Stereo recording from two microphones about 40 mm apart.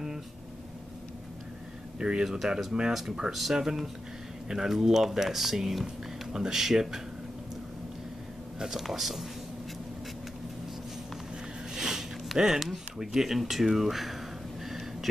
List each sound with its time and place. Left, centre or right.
2.0 s speech: right
2.2 s speech: centre
8.5 s speech: centre
11.7 s a sound: centre
12.4 s speech: centre
14.6 s a sound: centre